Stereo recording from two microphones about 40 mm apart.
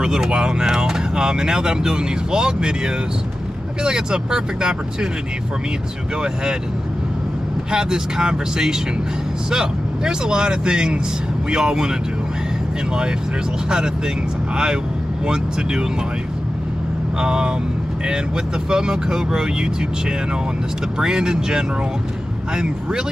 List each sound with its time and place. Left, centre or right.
0.0 s speech: centre
7.7 s speech: centre
14.5 s speech: right
17.2 s speech: right
18.7 s speech: centre
21.0 s speech: centre